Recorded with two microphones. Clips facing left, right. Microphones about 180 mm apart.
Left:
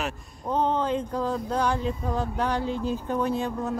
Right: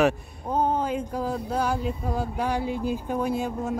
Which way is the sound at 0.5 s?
10° right (ahead or behind).